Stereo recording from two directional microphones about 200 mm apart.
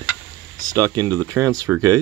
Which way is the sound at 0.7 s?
15° right (ahead or behind).